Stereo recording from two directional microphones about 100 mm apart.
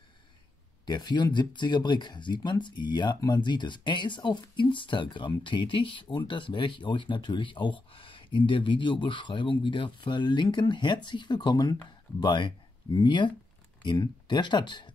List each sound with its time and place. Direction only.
0.8 s speech: 45° left (ahead or behind)